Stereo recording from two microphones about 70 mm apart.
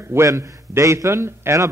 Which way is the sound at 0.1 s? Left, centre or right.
Right.